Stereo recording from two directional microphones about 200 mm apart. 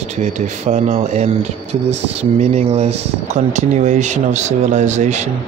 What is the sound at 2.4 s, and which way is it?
Speech, 35° right (ahead or behind).